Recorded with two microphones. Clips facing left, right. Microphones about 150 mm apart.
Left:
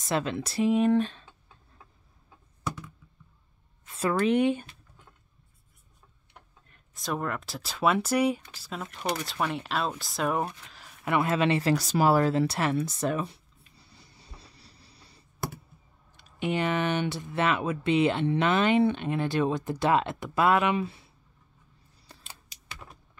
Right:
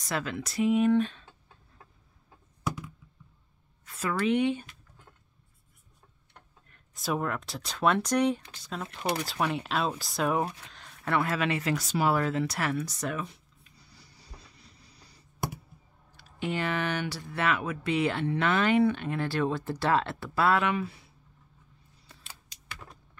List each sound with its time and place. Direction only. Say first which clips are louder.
0.0 s speech: left 4 dB; 25° left (ahead or behind)
3.8 s a sound: left 4 dB; 30° left (ahead or behind)
4.2 s speech: left 2 dB; 45° left (ahead or behind)
6.9 s speech: right 1 dB; 5° right (ahead or behind); by 15.1 s 30° left (ahead or behind)
16.2 s speech: left 3 dB; 20° left (ahead or behind)